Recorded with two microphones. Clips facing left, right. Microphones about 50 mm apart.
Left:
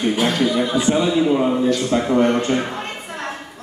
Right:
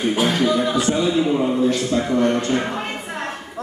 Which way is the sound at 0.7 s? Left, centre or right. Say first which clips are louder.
Left 1 dB; left.